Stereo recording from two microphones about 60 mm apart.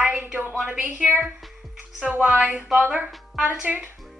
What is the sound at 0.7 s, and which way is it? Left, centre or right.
Speech, right.